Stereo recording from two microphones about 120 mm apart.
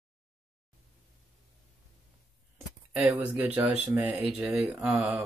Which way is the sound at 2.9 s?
10° right (ahead or behind).